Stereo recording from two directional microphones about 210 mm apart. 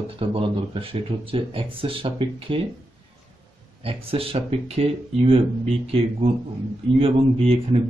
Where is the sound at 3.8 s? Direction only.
25° right (ahead or behind).